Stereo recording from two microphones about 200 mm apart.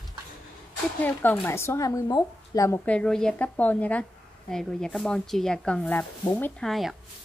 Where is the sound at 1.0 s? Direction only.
10° left (ahead or behind).